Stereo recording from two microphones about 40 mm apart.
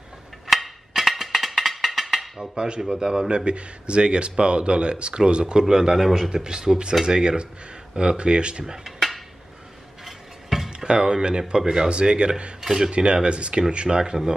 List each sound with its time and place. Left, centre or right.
0.5 s music: centre
2.5 s speech: right
5.9 s speech: centre
6.3 s speech: centre
8.8 s a sound: centre
10.9 s speech: right
12.5 s speech: centre
12.9 s speech: right